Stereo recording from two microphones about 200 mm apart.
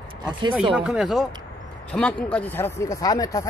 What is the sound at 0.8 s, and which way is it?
Speech, centre (ahead or behind).